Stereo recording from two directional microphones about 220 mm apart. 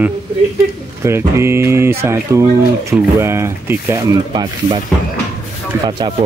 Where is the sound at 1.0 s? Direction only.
10° right (ahead or behind).